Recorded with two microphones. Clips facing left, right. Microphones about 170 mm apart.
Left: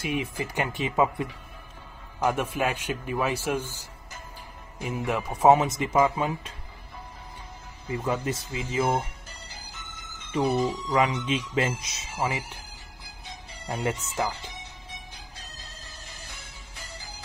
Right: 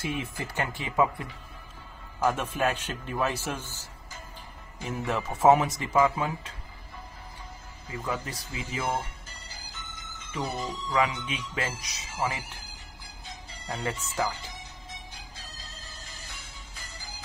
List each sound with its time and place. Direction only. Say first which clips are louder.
0.0 s a man's voice: left 3 dB; 15° left (ahead or behind)
4.8 s speech: left 2 dB; 15° left (ahead or behind)
8.0 s speech: left 5 dB; 30° left (ahead or behind)
10.9 s speech: even; 25° left (ahead or behind)
13.7 s speech: left 4 dB; 20° left (ahead or behind)